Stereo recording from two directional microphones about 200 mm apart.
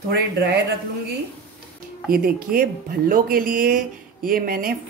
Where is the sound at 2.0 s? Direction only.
45° right (ahead or behind).